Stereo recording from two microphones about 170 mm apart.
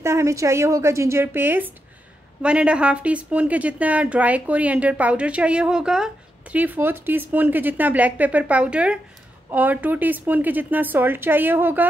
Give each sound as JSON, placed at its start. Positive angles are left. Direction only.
{"t": 0.0, "sound": "a woman's voice", "side_deg": -15}